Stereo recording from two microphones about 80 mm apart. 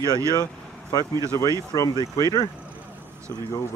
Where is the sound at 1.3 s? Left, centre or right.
Left.